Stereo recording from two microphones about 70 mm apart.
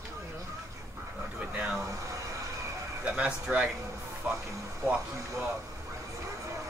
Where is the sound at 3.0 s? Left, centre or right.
Centre.